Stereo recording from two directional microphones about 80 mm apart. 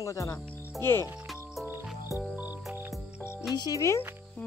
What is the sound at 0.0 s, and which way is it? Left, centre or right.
Speech, left.